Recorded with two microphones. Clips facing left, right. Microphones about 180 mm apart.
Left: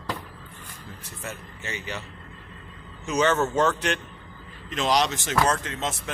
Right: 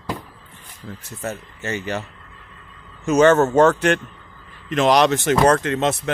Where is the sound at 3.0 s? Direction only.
50° right (ahead or behind).